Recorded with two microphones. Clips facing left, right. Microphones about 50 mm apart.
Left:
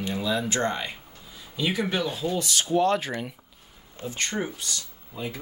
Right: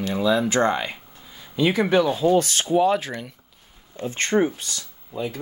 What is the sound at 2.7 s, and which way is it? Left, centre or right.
Speech, centre.